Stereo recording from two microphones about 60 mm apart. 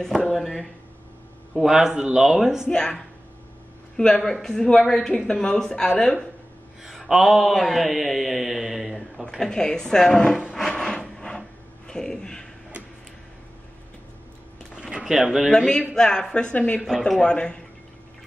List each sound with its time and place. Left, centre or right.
0.2 s speech: centre
2.7 s a woman's voice: centre
6.8 s speech: centre
9.5 s a woman's voice: centre
10.7 s a sound: centre
14.8 s a sound: centre
15.5 s a woman's voice: centre